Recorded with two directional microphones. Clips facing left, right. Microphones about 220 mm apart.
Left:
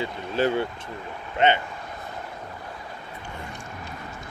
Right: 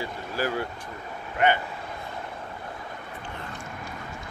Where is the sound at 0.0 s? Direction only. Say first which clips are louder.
Left 5 dB; 25° left (ahead or behind).